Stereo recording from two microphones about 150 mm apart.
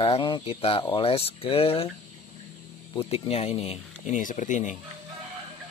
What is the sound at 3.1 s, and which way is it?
Speech, 40° left (ahead or behind).